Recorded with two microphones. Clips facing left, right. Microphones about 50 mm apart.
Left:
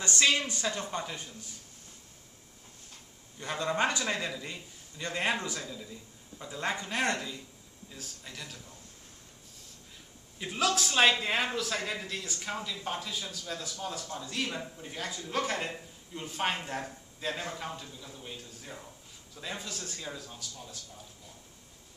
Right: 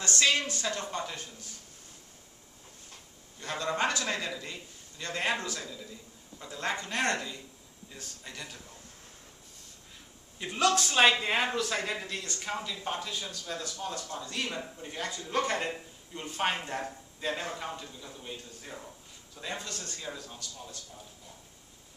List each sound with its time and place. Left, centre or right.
0.0 s a man's voice: centre
3.3 s a man's voice: centre
10.4 s speech: centre